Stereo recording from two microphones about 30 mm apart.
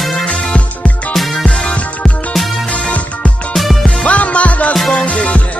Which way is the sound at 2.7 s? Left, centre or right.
Left.